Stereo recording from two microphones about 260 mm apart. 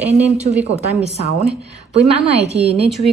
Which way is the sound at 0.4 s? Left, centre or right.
Right.